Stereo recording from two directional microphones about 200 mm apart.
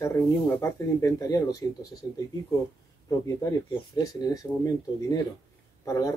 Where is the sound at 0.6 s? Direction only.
15° left (ahead or behind).